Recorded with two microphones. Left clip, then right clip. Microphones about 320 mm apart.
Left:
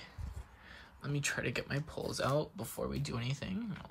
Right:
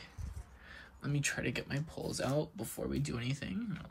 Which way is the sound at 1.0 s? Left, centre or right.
Centre.